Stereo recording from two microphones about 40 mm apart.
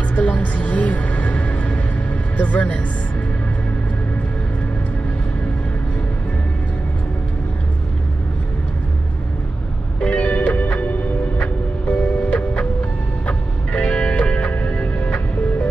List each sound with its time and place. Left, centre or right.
0.1 s music: left
9.9 s music: left